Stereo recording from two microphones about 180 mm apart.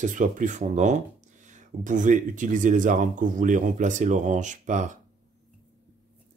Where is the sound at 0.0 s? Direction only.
45° right (ahead or behind).